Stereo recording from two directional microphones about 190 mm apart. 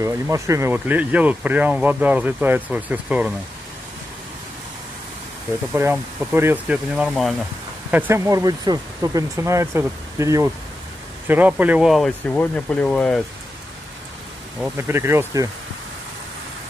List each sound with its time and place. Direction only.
0.0 s speech: 15° right (ahead or behind)
5.7 s speech: 10° right (ahead or behind)
7.9 s speech: 10° right (ahead or behind); by 13.2 s 5° left (ahead or behind)
14.6 s speech: 15° right (ahead or behind)